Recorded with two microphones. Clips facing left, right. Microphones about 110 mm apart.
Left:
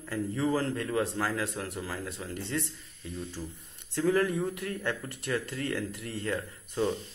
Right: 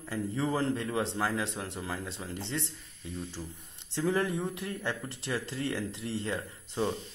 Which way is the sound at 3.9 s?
20° right (ahead or behind).